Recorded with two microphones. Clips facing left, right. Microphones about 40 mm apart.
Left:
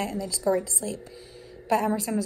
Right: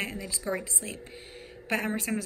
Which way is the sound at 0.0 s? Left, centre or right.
Right.